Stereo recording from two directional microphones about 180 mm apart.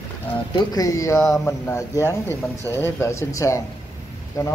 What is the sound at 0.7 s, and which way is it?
Speech, 20° left (ahead or behind).